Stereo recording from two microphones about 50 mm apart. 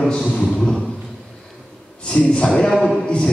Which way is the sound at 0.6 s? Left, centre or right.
Centre.